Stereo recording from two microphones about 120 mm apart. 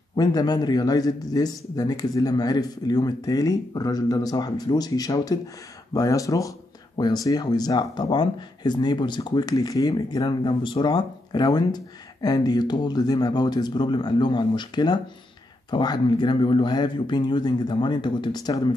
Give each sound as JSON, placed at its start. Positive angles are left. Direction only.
{"t": 0.1, "sound": "speech", "side_deg": 35}